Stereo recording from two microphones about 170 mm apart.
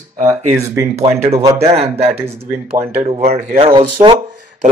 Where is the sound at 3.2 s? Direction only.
65° right (ahead or behind).